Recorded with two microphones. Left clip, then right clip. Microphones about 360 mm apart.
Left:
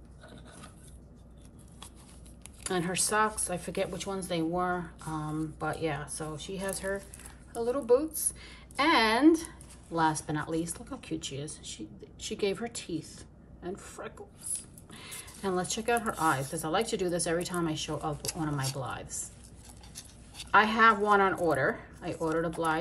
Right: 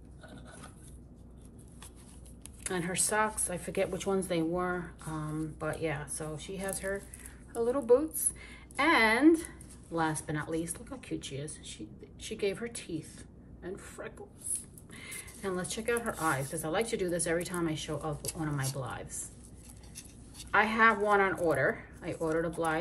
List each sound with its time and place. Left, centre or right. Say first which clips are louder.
2.6 s a woman's voice: left 3 dB; centre